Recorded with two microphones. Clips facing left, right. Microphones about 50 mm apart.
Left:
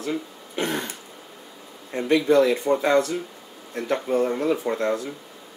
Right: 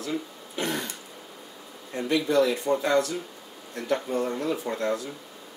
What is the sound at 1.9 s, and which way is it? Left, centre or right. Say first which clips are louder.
Speech: left 5 dB; left.